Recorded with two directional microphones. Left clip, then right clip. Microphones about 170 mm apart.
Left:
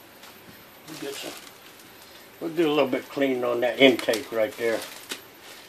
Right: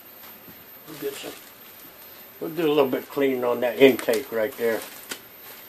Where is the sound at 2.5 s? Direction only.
30° right (ahead or behind).